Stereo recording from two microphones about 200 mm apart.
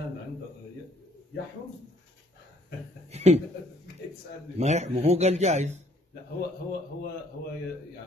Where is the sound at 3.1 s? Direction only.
35° right (ahead or behind).